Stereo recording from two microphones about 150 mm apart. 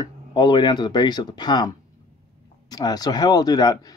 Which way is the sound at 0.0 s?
30° left (ahead or behind).